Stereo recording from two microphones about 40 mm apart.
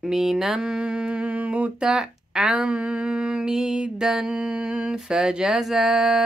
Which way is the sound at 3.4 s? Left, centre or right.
Centre.